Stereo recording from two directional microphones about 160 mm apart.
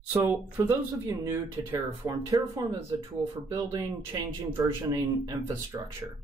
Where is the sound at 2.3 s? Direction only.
25° right (ahead or behind).